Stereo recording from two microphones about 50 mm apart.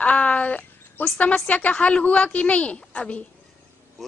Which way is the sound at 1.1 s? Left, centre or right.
Left.